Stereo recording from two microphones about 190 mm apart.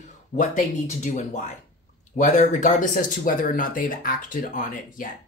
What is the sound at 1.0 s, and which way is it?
Speech, 40° left (ahead or behind).